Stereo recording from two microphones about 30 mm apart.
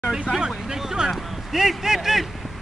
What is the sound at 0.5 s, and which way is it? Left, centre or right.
Vehicle, centre.